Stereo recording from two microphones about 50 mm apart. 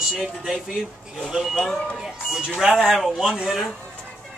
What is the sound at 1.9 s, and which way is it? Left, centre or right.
Speech, centre.